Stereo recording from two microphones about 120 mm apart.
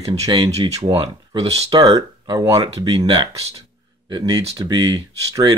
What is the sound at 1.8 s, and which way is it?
Speech, 40° right (ahead or behind).